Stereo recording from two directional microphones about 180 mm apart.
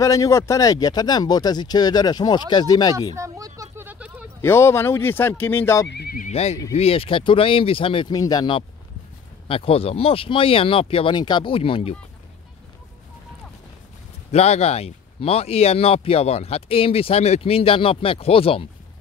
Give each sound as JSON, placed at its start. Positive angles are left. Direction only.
{"t": 0.0, "sound": "speech", "side_deg": 20}
{"t": 3.2, "sound": "a sound", "side_deg": -20}
{"t": 4.4, "sound": "speech", "side_deg": 15}
{"t": 5.9, "sound": "neigh", "side_deg": 60}
{"t": 6.3, "sound": "speech", "side_deg": 35}
{"t": 14.3, "sound": "speech", "side_deg": 35}